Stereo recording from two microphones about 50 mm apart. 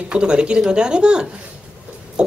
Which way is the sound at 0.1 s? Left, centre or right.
Centre.